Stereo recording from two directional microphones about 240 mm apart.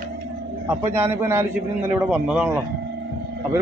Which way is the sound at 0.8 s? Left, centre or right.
Centre.